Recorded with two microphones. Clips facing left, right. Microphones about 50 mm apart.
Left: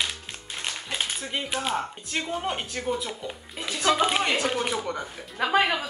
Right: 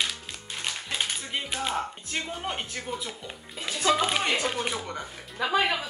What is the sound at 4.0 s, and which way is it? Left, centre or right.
Speech, centre.